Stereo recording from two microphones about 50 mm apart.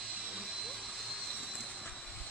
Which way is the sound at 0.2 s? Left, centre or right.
Centre.